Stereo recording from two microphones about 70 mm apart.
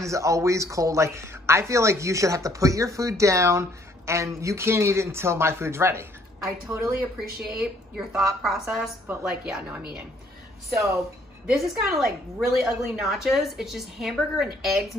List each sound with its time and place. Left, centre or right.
0.0 s speech: right
7.2 s a woman's voice: centre
10.7 s speech: right
11.5 s a woman's voice: centre